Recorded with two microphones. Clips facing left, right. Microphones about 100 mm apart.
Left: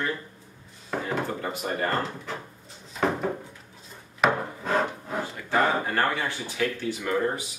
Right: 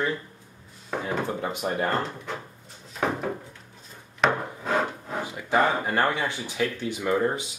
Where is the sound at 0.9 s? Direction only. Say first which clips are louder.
Even; centre (ahead or behind).